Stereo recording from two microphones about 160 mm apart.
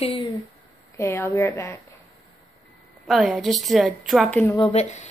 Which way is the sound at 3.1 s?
Centre (ahead or behind).